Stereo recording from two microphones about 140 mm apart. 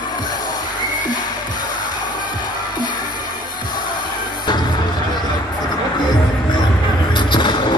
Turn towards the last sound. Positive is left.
turn(degrees=35)  # may be behind; listen again after turning